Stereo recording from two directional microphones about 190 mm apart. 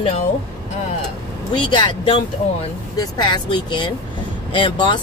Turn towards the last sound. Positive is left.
turn(degrees=25)  # may be behind; listen again after turning